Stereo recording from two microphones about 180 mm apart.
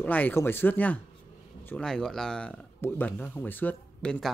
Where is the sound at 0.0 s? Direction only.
10° left (ahead or behind).